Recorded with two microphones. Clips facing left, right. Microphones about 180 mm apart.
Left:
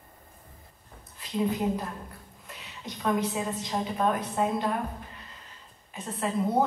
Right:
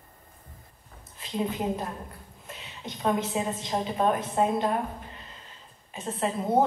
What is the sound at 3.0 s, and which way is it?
A woman's voice, 25° right (ahead or behind).